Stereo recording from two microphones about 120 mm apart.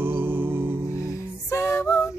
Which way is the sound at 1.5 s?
20° left (ahead or behind).